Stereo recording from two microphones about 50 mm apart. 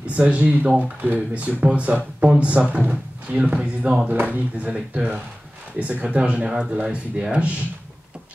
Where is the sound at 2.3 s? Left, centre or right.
Right.